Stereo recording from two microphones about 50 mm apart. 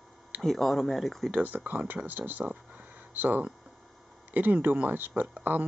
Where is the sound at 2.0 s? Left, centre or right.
Right.